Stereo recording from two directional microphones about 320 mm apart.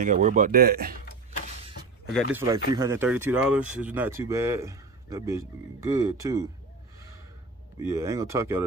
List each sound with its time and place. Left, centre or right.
0.0 s speech: right
2.3 s speech: centre
7.8 s speech: centre